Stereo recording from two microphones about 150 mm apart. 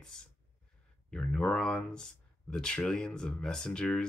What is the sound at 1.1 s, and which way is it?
Speech, 5° left (ahead or behind).